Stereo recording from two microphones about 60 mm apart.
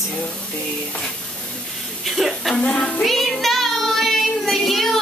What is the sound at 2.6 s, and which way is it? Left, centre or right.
Child singing, left.